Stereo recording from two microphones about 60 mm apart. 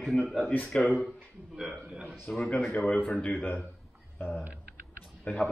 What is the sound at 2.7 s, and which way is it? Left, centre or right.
Speech, left.